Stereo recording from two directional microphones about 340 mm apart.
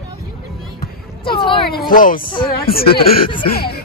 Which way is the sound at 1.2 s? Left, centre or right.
Centre.